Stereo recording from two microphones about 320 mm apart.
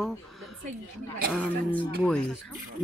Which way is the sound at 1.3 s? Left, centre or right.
Centre.